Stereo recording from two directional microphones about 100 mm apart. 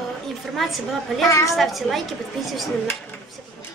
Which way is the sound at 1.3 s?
35° left (ahead or behind).